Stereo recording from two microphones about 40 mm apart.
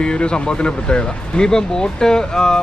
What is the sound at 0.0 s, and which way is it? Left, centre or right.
Speech, left.